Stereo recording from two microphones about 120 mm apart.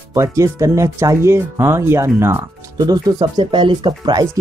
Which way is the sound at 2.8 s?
35° right (ahead or behind).